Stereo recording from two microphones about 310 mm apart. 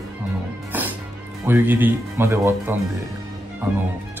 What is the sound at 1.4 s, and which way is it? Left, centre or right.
Speech, centre.